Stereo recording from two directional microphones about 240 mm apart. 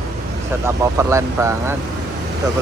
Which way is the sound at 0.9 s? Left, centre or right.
Centre.